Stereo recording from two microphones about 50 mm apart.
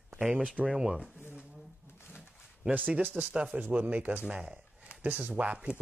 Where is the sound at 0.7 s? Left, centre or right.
Centre.